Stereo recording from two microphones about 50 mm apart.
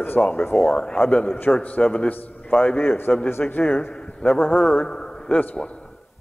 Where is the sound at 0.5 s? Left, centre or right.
Centre.